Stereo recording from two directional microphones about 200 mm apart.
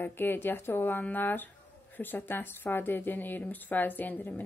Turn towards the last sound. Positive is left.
turn(degrees=10)  # may be behind; listen again after turning